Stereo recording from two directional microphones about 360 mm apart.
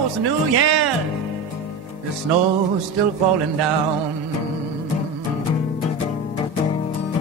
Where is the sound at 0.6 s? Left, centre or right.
Right.